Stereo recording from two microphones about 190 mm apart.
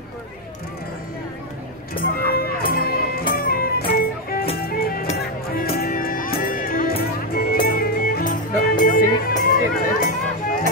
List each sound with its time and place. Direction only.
2.1 s music: 55° left (ahead or behind)